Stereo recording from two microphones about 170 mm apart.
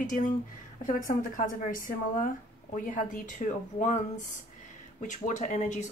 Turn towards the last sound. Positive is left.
turn(degrees=45)  # may be behind; listen again after turning